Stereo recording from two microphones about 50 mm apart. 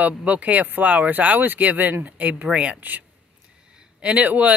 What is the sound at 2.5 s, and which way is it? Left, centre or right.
Speech, right.